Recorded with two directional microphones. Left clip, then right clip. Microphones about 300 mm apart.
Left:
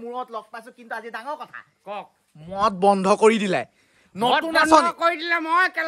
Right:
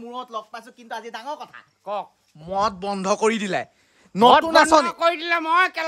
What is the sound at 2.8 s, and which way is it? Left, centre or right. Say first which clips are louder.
Speech: left 5 dB; centre.